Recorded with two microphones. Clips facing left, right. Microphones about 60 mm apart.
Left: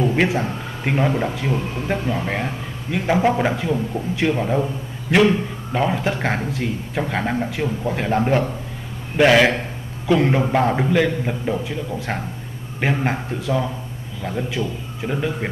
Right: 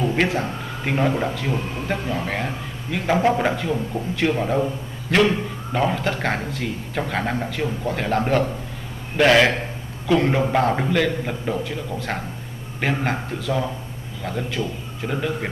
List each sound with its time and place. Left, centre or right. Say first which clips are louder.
0.4 s a man's voice: left 1 dB; centre
1.5 s a man's voice: left 2 dB; centre
9.2 s a man's voice: left 1 dB; centre